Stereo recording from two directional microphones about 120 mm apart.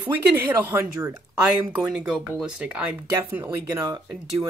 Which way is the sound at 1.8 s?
5° right (ahead or behind).